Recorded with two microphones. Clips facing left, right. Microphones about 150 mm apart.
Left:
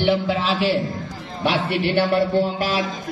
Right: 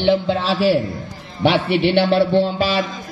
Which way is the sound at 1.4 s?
70° right (ahead or behind).